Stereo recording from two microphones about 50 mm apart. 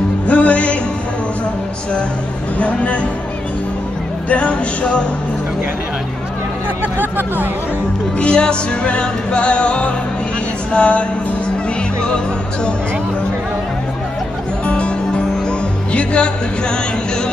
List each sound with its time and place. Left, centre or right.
0.3 s music: left
2.6 s music: left
4.3 s music: left
7.0 s speech: right
8.2 s music: centre
14.7 s music: left